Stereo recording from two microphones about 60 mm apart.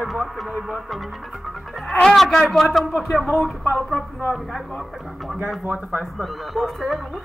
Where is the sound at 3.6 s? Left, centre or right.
Left.